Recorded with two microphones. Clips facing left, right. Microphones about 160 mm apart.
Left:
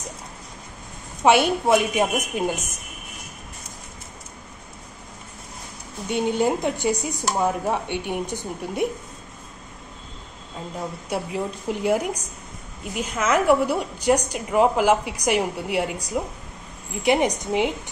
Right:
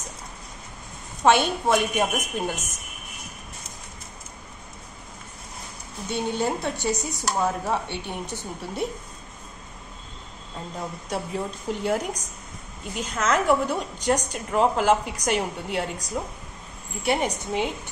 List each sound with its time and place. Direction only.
1.2 s a woman's voice: 10° left (ahead or behind)
6.0 s a woman's voice: 15° left (ahead or behind)
11.1 s a woman's voice: 10° left (ahead or behind)